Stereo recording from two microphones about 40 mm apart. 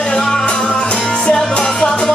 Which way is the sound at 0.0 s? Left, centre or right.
Left.